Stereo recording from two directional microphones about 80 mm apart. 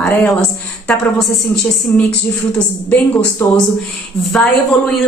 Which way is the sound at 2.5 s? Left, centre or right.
Left.